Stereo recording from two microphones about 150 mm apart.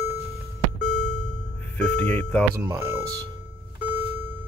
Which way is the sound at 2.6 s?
15° right (ahead or behind).